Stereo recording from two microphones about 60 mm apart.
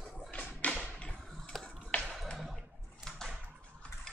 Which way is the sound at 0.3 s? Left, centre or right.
Left.